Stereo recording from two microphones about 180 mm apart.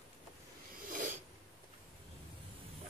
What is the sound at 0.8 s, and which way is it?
Filing, 50° right (ahead or behind).